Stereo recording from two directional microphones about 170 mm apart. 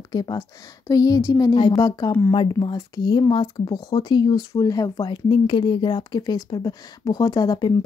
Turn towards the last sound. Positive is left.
turn(degrees=25)  # may be behind; listen again after turning